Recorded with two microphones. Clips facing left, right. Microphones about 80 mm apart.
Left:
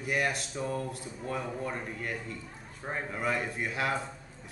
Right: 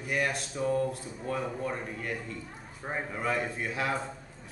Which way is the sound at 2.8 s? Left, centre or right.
Centre.